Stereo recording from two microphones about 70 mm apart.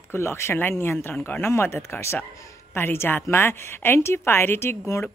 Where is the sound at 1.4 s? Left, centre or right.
Left.